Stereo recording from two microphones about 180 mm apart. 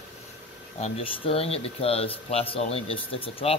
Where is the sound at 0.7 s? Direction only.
35° left (ahead or behind).